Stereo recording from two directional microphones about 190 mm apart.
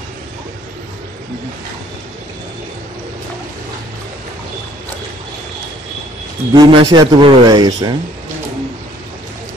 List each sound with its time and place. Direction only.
6.5 s speech: 20° right (ahead or behind)